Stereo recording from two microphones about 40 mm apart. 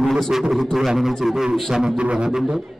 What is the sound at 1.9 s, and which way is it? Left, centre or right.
Didgeridoo, right.